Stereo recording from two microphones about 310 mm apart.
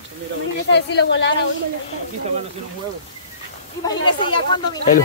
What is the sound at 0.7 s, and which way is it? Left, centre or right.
Speech, left.